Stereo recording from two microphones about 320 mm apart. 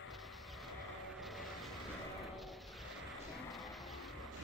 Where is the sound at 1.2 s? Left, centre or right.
Centre.